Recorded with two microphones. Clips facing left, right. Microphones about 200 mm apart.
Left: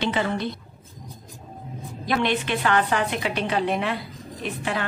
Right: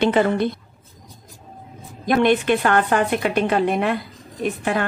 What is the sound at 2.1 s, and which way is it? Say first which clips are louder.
A woman's voice: right 7 dB; 50° right (ahead or behind).